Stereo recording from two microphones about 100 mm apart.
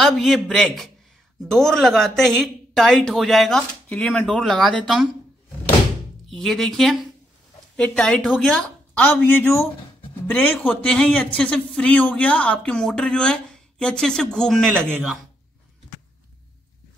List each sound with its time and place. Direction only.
0.0 s speech: centre (ahead or behind)
6.3 s a man's voice: 5° left (ahead or behind)